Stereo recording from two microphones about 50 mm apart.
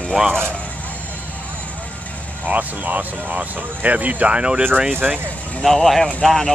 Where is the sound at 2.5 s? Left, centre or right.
Right.